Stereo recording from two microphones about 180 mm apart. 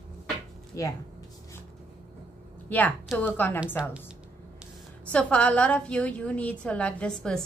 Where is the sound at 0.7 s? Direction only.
20° left (ahead or behind).